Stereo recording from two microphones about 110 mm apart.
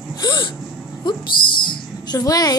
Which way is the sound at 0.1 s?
40° left (ahead or behind).